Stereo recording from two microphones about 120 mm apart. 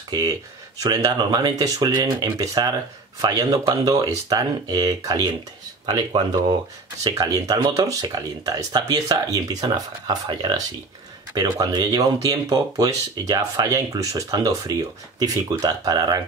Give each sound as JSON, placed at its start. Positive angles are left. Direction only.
{"t": 0.1, "sound": "speech", "side_deg": -30}